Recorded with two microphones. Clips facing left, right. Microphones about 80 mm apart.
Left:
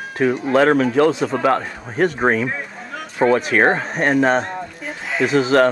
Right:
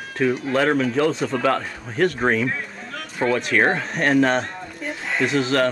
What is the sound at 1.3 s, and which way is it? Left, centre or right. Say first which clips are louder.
Speech: left 3 dB; centre.